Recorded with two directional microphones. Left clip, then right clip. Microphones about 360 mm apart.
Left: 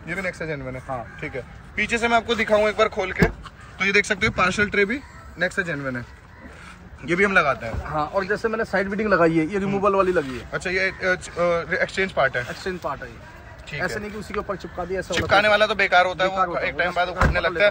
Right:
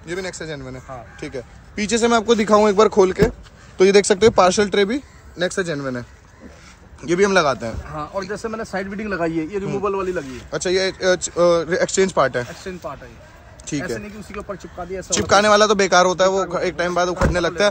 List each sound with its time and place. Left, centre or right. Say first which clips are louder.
0.0 s a man's voice: even; centre
1.8 s a man's voice: right 2 dB; centre
7.1 s a man's voice: right 2 dB; centre
7.9 s speech: left 6 dB; centre
9.2 s a man's voice: left 3 dB; left
10.5 s a man's voice: right 4 dB; centre
12.4 s speech: left 3 dB; centre
15.0 s a man's voice: right 3 dB; centre